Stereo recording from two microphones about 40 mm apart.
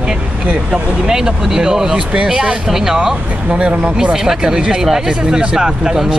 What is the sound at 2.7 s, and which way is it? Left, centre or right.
Speech, centre.